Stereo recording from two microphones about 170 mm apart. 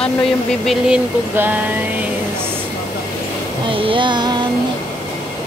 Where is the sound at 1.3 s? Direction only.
10° right (ahead or behind).